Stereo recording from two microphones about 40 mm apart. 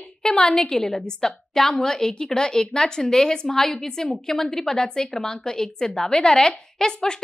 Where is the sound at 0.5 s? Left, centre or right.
Centre.